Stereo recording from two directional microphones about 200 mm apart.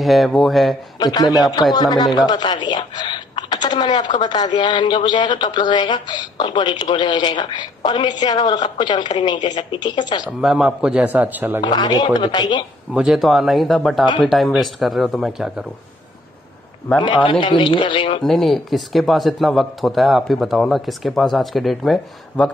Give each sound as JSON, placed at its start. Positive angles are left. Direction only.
{"t": 0.0, "sound": "speech", "side_deg": 0}
{"t": 0.9, "sound": "a man's voice", "side_deg": 20}
{"t": 10.4, "sound": "speech", "side_deg": -5}
{"t": 11.6, "sound": "speech", "side_deg": 20}
{"t": 12.9, "sound": "speech", "side_deg": 0}
{"t": 17.0, "sound": "speech", "side_deg": 25}
{"t": 18.2, "sound": "speech", "side_deg": 0}